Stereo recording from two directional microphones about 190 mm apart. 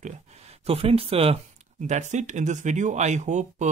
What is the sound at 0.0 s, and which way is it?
Speech, 35° right (ahead or behind).